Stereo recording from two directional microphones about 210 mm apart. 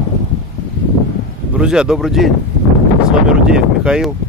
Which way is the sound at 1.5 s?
5° right (ahead or behind).